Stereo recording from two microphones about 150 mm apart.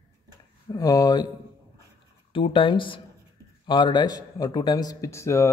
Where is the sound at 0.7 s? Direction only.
25° left (ahead or behind).